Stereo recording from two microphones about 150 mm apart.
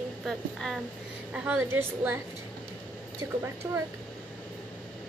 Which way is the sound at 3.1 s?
15° right (ahead or behind).